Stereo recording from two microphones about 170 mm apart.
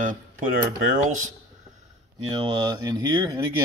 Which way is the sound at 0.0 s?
50° right (ahead or behind).